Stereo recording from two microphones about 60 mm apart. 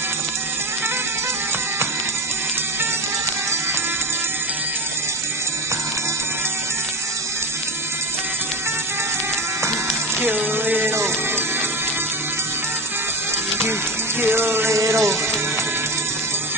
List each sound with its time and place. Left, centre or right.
10.3 s music: right
14.2 s music: right
14.8 s music: right